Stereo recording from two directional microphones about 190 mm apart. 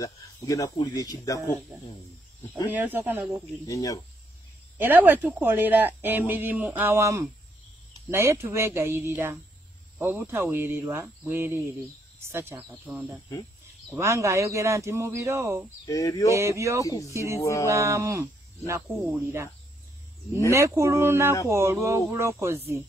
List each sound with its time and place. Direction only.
0.0 s speech: 15° left (ahead or behind)
2.5 s a woman's voice: 10° right (ahead or behind)
3.6 s a sound: 15° left (ahead or behind)
4.7 s a woman's voice: 10° right (ahead or behind)
15.8 s a sound: 20° left (ahead or behind)
16.3 s a woman's voice: 15° right (ahead or behind)
16.8 s a sound: 15° left (ahead or behind)
17.1 s a woman's voice: 15° right (ahead or behind)
17.4 s a sound: 15° left (ahead or behind)
17.6 s a woman's voice: 15° right (ahead or behind)
18.9 s a woman's voice: 5° right (ahead or behind)
20.5 s a woman's voice: 15° right (ahead or behind)